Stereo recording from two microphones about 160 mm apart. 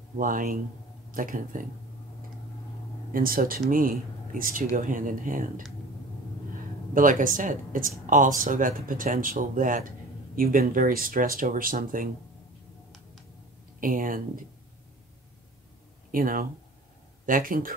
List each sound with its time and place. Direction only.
0.2 s speech: 60° right (ahead or behind)
3.1 s speech: 60° right (ahead or behind)
6.9 s speech: 55° right (ahead or behind)
13.7 s speech: 60° right (ahead or behind)
16.1 s speech: 60° right (ahead or behind)